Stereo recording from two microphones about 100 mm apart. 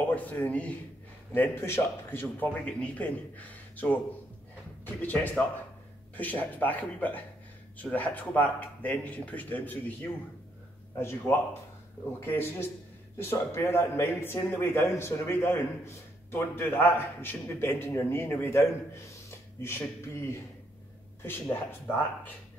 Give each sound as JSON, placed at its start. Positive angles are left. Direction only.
{"t": 0.1, "sound": "a man's voice", "side_deg": 15}
{"t": 11.0, "sound": "a man's voice", "side_deg": 25}